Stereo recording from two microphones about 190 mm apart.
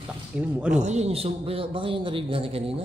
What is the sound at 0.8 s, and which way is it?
A man's voice, 35° right (ahead or behind).